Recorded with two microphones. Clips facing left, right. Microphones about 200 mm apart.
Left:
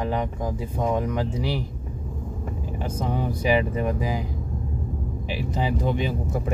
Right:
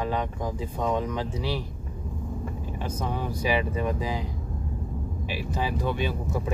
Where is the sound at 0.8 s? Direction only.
15° left (ahead or behind).